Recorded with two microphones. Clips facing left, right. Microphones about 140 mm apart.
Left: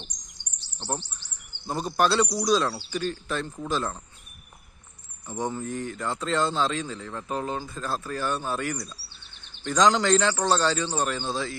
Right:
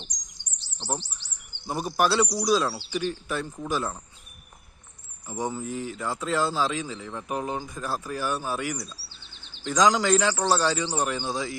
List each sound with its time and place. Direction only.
0.1 s bird vocalization: 60° left (ahead or behind)
1.7 s a man's voice: 10° right (ahead or behind)
5.2 s a man's voice: 10° right (ahead or behind)